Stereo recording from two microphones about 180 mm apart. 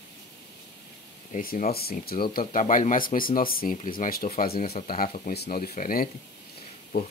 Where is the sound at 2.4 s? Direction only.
45° left (ahead or behind).